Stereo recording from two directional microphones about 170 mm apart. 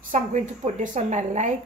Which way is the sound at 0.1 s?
45° right (ahead or behind).